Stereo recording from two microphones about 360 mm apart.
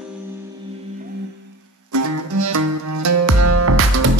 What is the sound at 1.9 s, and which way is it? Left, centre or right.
Music, right.